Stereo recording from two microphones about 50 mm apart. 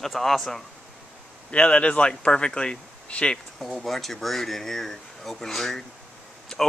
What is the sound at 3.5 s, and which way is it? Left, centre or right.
Speech, centre.